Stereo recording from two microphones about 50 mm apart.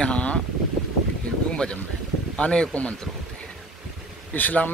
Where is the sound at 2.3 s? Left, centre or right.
Centre.